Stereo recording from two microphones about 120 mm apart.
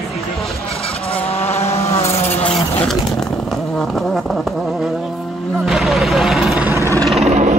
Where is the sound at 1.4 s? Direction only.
60° left (ahead or behind).